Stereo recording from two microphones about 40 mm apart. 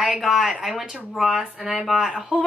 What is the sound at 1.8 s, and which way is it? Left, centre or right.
Speech, centre.